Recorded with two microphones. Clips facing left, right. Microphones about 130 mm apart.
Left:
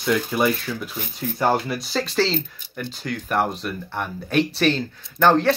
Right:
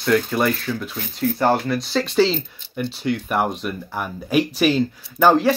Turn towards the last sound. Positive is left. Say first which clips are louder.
# right 2 dB
turn(degrees=-5)  # may be behind; listen again after turning